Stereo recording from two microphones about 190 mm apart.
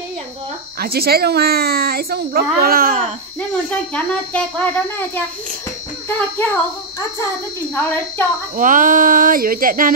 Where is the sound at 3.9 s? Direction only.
5° left (ahead or behind).